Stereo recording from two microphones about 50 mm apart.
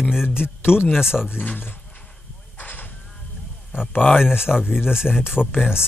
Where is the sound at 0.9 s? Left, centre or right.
Centre.